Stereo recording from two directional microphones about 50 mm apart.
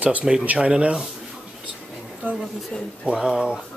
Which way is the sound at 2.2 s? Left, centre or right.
Right.